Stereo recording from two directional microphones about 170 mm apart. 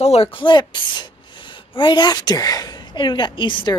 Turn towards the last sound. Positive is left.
turn(degrees=30)  # may be behind; listen again after turning